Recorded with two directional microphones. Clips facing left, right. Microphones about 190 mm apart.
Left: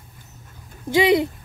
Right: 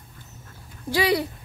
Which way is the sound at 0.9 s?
20° left (ahead or behind).